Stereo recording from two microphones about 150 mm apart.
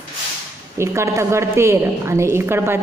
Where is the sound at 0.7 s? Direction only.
20° right (ahead or behind).